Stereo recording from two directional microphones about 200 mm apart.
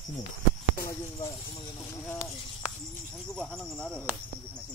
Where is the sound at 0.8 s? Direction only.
15° left (ahead or behind).